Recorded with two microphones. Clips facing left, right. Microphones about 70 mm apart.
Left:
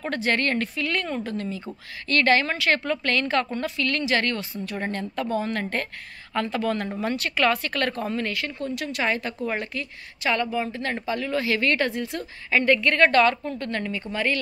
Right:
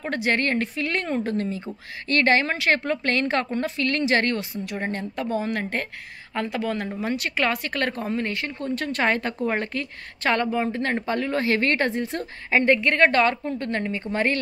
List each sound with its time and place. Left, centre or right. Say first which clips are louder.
0.1 s a woman's voice: right 1 dB; right
8.8 s a woman's voice: right 3 dB; right